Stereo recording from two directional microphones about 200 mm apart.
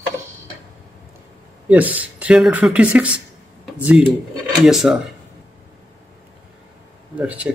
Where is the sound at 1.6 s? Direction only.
5° right (ahead or behind).